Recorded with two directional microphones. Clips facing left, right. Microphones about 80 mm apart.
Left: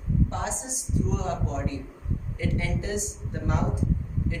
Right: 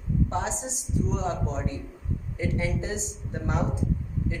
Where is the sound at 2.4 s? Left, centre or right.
Right.